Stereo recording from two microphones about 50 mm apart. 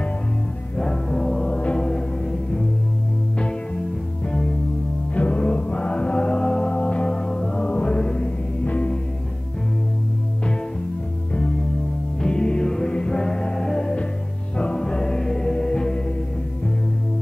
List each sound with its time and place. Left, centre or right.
0.7 s music: centre
1.5 s music: left
3.3 s music: centre
5.1 s music: left
12.2 s music: centre